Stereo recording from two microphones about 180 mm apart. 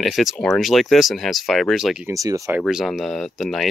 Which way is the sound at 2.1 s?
20° right (ahead or behind).